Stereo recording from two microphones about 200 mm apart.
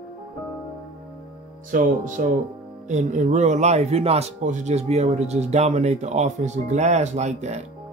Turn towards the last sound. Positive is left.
turn(degrees=-35)  # may be behind; listen again after turning